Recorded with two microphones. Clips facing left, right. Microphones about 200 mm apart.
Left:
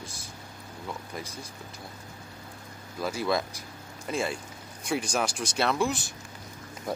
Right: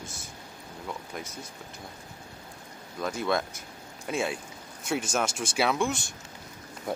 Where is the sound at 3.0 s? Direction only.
5° left (ahead or behind).